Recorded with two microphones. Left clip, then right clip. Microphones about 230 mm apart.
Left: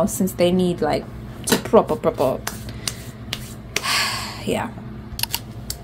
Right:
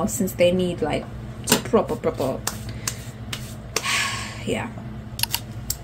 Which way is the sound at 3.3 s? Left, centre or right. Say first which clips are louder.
Left 3 dB; left.